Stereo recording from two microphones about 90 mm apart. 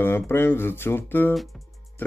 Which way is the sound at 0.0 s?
25° left (ahead or behind).